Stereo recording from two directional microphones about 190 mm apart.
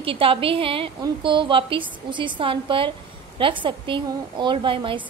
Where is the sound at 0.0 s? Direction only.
30° right (ahead or behind).